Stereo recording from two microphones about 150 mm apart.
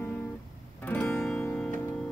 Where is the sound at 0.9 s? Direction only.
10° left (ahead or behind).